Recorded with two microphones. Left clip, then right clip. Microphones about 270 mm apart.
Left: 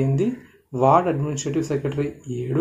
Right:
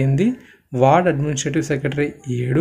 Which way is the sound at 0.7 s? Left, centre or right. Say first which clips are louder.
Right 3 dB; right.